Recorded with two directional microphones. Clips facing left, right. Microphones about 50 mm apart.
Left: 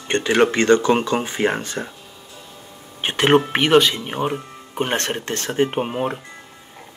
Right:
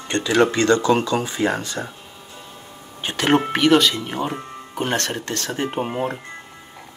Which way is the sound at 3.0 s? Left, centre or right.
Left.